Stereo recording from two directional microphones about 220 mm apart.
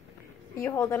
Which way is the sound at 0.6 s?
10° left (ahead or behind).